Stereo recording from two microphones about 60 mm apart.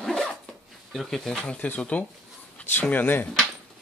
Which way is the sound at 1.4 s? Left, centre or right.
Left.